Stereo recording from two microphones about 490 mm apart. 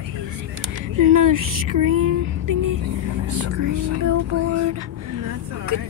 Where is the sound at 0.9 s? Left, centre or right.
Right.